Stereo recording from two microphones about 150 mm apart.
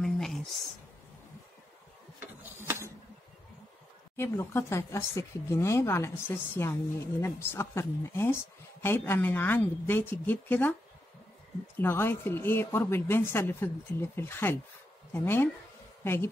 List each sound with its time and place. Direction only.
0.0 s a sound: centre (ahead or behind)
2.1 s printer: 15° right (ahead or behind)
4.2 s a woman's voice: 15° left (ahead or behind)
11.7 s a woman's voice: 15° left (ahead or behind)